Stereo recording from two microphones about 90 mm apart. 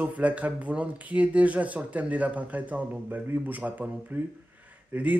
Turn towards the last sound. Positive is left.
turn(degrees=-15)  # may be behind; listen again after turning